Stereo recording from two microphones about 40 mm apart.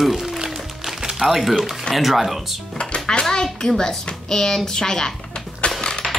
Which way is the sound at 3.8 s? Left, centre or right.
Centre.